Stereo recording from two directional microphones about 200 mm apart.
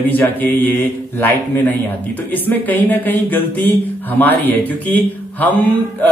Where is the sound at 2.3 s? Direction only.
10° left (ahead or behind).